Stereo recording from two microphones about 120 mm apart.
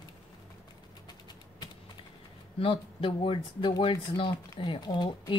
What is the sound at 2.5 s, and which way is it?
Speech, 50° left (ahead or behind).